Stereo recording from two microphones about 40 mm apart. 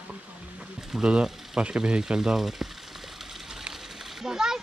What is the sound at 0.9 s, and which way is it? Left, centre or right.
Speech, centre.